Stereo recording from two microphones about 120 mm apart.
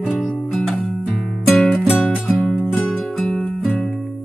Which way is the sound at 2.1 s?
15° left (ahead or behind).